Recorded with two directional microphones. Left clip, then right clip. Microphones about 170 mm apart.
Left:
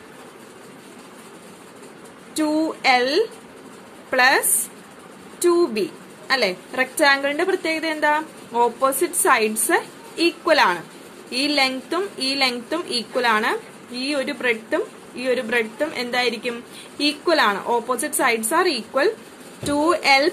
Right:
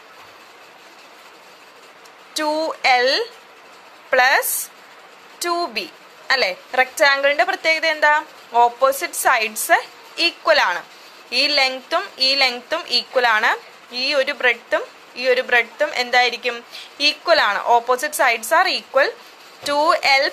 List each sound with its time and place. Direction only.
2.3 s a woman's voice: 15° right (ahead or behind)